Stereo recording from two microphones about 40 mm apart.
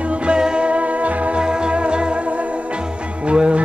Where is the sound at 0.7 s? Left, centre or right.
Right.